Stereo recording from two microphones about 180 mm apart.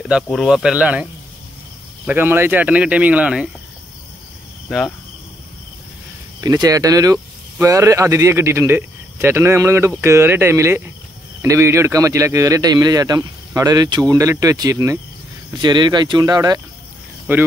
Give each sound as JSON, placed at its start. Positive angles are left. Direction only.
{"t": 0.1, "sound": "speech", "side_deg": -5}
{"t": 2.0, "sound": "speech", "side_deg": -10}
{"t": 4.6, "sound": "cricket", "side_deg": 0}
{"t": 6.4, "sound": "a man's voice", "side_deg": -20}
{"t": 17.3, "sound": "speech", "side_deg": -10}